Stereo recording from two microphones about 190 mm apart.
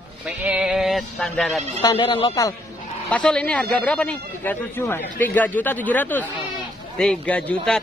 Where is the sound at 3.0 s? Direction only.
5° left (ahead or behind).